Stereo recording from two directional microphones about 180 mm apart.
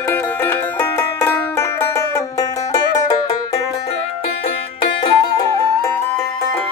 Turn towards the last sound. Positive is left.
turn(degrees=20)  # may be behind; listen again after turning